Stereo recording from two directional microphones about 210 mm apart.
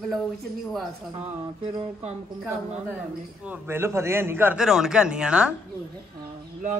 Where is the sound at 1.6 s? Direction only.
30° right (ahead or behind).